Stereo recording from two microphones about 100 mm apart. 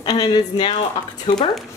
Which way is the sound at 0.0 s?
55° left (ahead or behind).